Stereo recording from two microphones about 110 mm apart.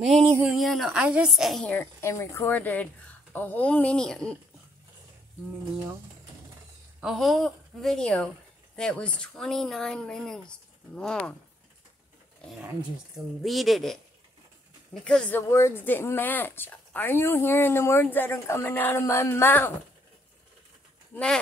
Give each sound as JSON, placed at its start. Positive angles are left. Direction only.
{"t": 0.0, "sound": "a woman's voice", "side_deg": 0}
{"t": 1.6, "sound": "a woman's voice", "side_deg": 15}
{"t": 2.5, "sound": "speech", "side_deg": 15}
{"t": 7.0, "sound": "a woman's voice", "side_deg": 0}
{"t": 13.4, "sound": "a woman's voice", "side_deg": 0}
{"t": 15.0, "sound": "a woman's voice", "side_deg": 10}
{"t": 21.1, "sound": "speech", "side_deg": 10}